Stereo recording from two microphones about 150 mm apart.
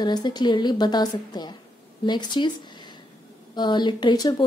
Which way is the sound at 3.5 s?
30° left (ahead or behind).